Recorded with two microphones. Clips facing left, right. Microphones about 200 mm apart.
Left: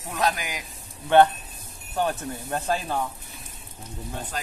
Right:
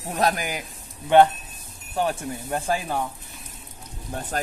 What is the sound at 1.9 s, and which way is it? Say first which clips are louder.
Speech: right 1 dB; 10° right (ahead or behind).